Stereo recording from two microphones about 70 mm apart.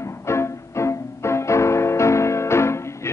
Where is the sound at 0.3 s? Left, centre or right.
Left.